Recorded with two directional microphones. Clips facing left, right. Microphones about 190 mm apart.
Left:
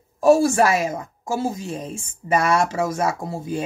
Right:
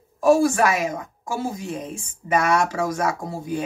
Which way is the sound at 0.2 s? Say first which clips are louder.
Left 2 dB; 25° left (ahead or behind).